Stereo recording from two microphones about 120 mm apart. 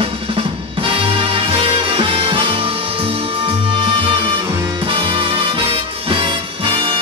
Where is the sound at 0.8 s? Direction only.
45° right (ahead or behind).